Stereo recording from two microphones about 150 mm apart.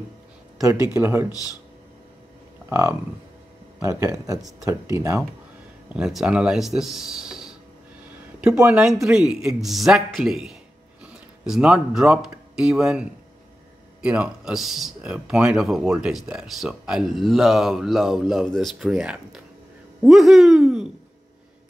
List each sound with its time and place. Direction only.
0.6 s speech: 20° right (ahead or behind)
2.7 s speech: 20° right (ahead or behind)
5.9 s a man's voice: 5° right (ahead or behind)
14.0 s a man's voice: 5° right (ahead or behind)